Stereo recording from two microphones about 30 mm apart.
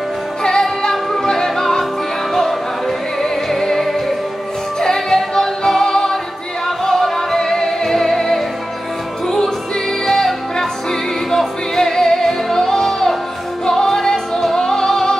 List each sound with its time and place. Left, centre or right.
0.4 s music: centre
3.4 s music: centre
10.0 s music: centre